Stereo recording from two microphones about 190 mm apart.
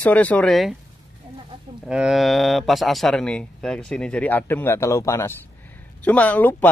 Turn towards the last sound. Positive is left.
turn(degrees=10)  # may be behind; listen again after turning